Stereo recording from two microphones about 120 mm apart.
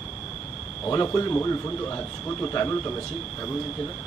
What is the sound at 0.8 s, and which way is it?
Speech, 25° left (ahead or behind).